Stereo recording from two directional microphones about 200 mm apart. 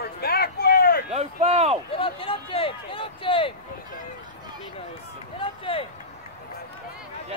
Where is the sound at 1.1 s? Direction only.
30° right (ahead or behind).